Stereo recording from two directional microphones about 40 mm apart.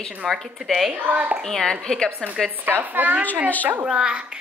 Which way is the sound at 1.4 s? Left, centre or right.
Centre.